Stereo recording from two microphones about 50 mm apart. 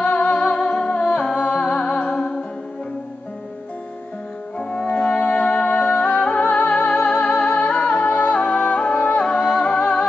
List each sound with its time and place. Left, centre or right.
0.0 s music: left
4.6 s music: left